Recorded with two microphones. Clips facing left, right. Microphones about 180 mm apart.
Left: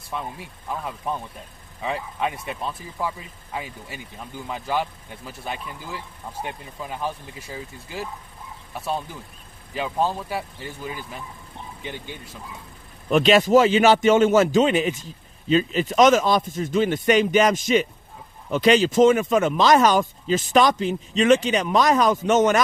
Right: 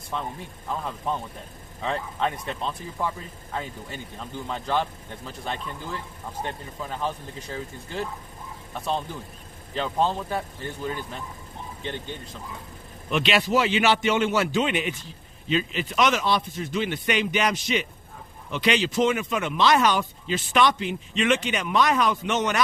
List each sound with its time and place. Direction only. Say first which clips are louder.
0.1 s speech: even; 10° left (ahead or behind)
13.1 s a man's voice: left 7 dB; 45° left (ahead or behind)